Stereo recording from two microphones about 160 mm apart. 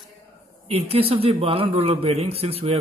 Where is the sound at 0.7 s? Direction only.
40° right (ahead or behind).